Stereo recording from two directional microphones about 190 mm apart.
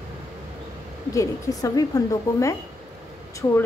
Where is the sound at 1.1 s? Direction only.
20° left (ahead or behind).